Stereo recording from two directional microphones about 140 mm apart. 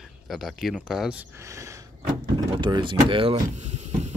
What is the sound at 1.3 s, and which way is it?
Speech, 20° right (ahead or behind).